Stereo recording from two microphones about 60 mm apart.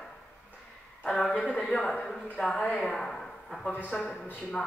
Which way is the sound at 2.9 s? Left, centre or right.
Centre.